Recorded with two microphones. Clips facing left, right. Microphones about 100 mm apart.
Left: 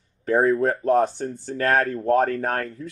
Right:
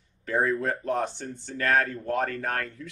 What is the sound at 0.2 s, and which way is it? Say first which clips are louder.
Speech: left 7 dB; 35° left (ahead or behind).